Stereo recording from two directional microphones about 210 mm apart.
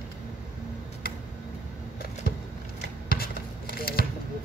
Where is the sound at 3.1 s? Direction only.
45° left (ahead or behind).